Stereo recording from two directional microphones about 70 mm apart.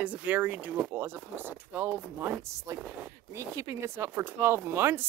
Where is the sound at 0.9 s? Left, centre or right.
Right.